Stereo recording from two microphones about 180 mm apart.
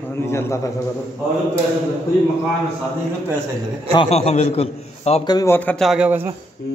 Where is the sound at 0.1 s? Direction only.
15° left (ahead or behind).